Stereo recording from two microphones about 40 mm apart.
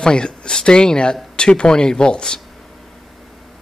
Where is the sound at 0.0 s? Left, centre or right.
Left.